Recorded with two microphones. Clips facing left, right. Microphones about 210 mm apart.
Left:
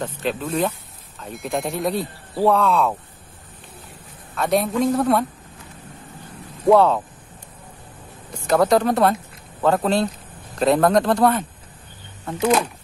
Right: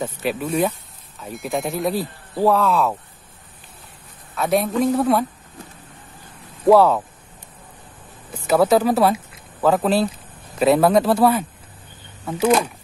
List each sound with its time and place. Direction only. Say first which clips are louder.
0.0 s speech: right 1 dB; 10° right (ahead or behind)
4.4 s speech: right 1 dB; centre (ahead or behind)
6.7 s speech: right 1 dB; 5° right (ahead or behind)
8.3 s speech: right 1 dB; 5° right (ahead or behind)